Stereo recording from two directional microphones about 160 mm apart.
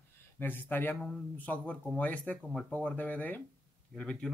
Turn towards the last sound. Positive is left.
turn(degrees=5)  # may be behind; listen again after turning